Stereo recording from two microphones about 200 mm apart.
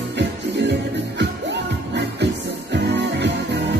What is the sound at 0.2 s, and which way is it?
Music, 60° right (ahead or behind).